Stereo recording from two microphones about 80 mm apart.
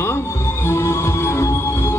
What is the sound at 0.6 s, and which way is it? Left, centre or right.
Music, left.